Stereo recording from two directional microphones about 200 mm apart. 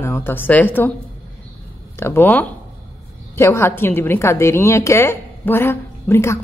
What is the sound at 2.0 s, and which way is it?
Speech, 10° left (ahead or behind).